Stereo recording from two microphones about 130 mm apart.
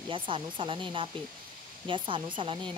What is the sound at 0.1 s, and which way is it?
Speech, 40° right (ahead or behind).